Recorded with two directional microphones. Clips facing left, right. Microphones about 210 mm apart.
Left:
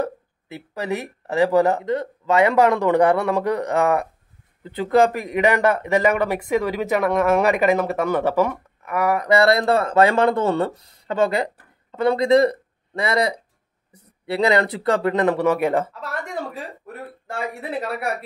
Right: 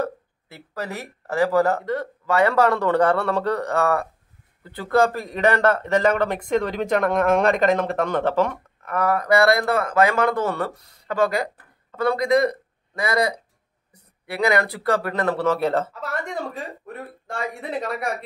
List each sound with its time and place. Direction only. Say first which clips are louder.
0.0 s speech: left 1 dB; 15° left (ahead or behind)
15.9 s speech: right 1 dB; centre (ahead or behind)